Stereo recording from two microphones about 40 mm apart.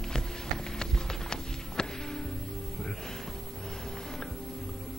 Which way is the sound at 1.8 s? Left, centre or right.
Centre.